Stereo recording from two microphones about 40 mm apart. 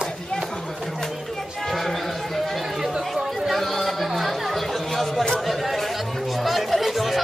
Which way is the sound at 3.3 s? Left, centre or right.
Centre.